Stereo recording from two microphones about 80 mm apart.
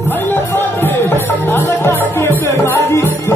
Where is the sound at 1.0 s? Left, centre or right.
Left.